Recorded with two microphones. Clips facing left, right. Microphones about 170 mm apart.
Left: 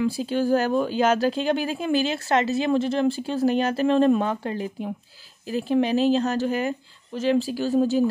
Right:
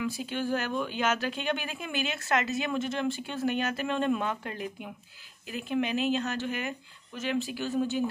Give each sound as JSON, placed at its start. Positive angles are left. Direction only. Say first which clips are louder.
{"t": 0.0, "sound": "speech", "louder": "left 8 dB", "side_deg": 35}